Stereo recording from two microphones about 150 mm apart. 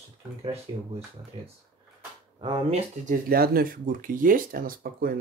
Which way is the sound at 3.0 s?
80° right.